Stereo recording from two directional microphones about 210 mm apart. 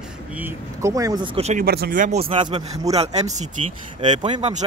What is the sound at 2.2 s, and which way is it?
Speech, 30° right (ahead or behind).